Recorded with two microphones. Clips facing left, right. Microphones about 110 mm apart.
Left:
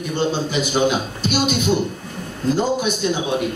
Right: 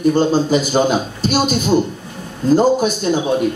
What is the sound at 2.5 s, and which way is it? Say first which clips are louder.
Speech: right 8 dB; 40° right (ahead or behind).